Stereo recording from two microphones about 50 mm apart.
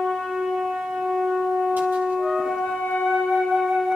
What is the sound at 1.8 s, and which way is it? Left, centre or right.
Shofar, right.